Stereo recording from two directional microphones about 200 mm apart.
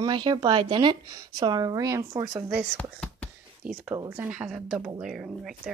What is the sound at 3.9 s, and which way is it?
Speech, 15° right (ahead or behind).